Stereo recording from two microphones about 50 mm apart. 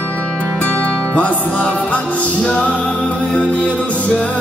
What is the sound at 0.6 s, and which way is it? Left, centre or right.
Music, left.